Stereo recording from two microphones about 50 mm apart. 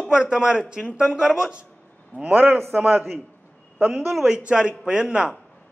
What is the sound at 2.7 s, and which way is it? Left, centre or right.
Speech, centre.